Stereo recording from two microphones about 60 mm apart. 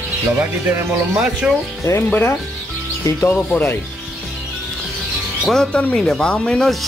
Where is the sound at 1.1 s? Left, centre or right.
Centre.